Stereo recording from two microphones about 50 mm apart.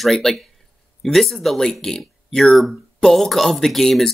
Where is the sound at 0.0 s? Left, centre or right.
Centre.